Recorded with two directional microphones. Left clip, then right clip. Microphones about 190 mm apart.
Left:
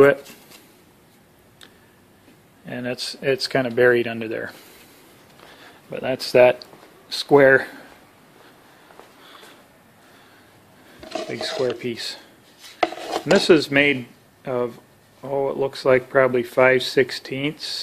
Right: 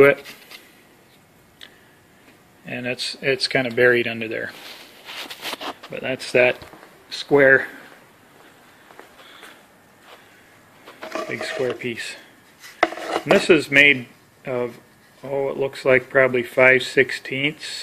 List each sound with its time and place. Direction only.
2.6 s speech: centre (ahead or behind)
5.9 s speech: 10° left (ahead or behind)
11.1 s dishes: centre (ahead or behind)
11.4 s speech: 5° left (ahead or behind)
12.9 s chopping: centre (ahead or behind)
13.4 s speech: 15° left (ahead or behind)